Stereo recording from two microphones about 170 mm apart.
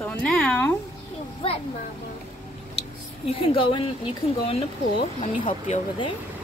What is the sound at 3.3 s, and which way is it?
Speech, 30° left (ahead or behind).